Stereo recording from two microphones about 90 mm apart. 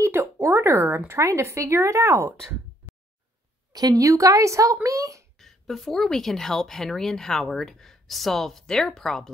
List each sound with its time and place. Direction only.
0.0 s speech: 30° right (ahead or behind)
3.7 s a woman's voice: 45° right (ahead or behind)
5.4 s a woman's voice: 5° left (ahead or behind)